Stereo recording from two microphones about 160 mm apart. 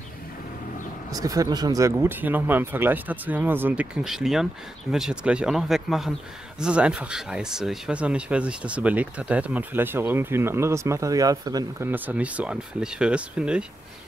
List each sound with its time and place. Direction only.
1.1 s speech: 20° right (ahead or behind)
11.9 s speech: 10° right (ahead or behind)